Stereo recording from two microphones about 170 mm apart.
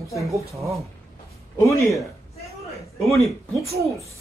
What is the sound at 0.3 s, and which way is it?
Speech, 20° right (ahead or behind).